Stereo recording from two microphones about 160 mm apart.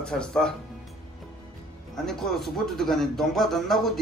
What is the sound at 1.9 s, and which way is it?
A man's voice, centre (ahead or behind).